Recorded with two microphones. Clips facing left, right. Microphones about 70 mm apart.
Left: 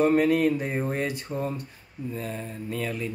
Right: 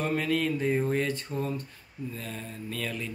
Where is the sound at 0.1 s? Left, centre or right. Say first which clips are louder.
Left 7 dB; left.